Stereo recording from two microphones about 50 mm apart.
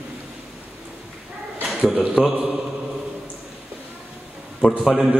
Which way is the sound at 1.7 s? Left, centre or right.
Centre.